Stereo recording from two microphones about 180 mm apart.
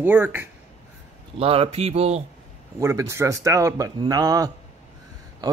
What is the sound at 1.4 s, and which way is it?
Speech, 35° right (ahead or behind).